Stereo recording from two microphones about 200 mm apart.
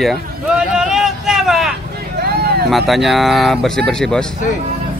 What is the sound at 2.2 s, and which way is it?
Vehicle, 50° right (ahead or behind).